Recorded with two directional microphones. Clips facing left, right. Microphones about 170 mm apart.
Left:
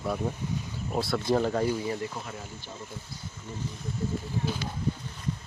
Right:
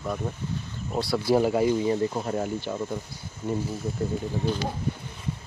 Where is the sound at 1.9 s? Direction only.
30° right (ahead or behind).